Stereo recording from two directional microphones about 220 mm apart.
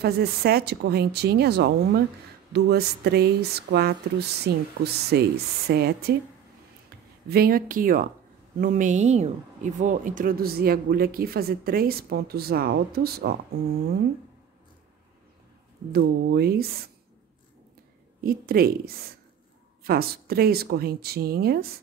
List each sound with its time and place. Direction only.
0.0 s speech: 45° right (ahead or behind)
7.2 s speech: 45° right (ahead or behind)
15.9 s speech: 45° right (ahead or behind)
18.2 s speech: 45° right (ahead or behind)